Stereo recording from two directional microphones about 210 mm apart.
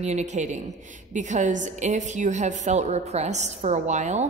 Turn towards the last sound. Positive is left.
turn(degrees=-35)  # may be behind; listen again after turning